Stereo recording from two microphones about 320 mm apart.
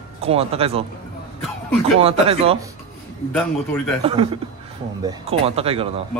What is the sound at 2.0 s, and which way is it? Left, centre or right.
Speech, centre.